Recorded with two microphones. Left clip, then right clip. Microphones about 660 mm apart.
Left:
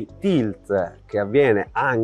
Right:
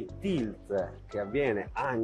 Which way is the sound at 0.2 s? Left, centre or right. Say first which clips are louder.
Left 12 dB; left.